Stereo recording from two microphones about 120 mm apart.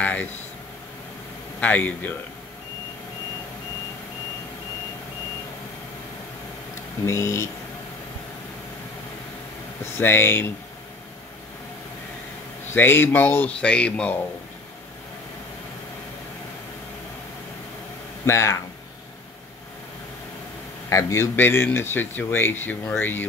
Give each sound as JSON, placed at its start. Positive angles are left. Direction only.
{"t": 0.0, "sound": "air conditioning", "side_deg": 10}
{"t": 1.6, "sound": "speech", "side_deg": 15}
{"t": 7.1, "sound": "speech", "side_deg": 25}
{"t": 9.9, "sound": "speech", "side_deg": 20}
{"t": 12.7, "sound": "speech", "side_deg": 15}
{"t": 18.2, "sound": "speech", "side_deg": 25}
{"t": 20.9, "sound": "speech", "side_deg": 25}